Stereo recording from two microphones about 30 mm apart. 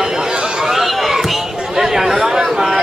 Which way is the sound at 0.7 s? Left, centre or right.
Centre.